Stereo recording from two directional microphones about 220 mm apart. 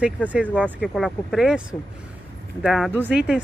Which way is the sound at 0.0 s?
5° right (ahead or behind).